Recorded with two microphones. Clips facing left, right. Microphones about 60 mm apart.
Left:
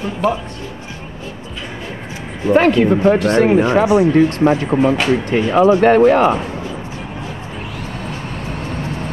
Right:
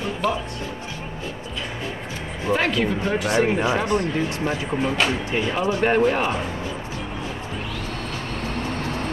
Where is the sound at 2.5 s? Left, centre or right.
Left.